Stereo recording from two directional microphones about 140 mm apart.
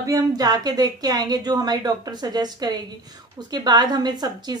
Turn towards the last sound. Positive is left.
turn(degrees=-30)  # may be behind; listen again after turning